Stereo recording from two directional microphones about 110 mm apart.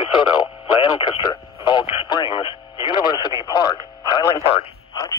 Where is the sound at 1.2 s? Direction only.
40° left (ahead or behind).